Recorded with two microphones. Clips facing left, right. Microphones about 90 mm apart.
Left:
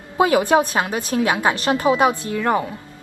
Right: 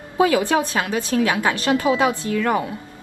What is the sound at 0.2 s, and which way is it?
A woman's voice, 25° left (ahead or behind).